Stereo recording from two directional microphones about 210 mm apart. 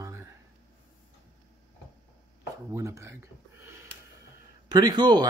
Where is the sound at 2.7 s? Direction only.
15° right (ahead or behind).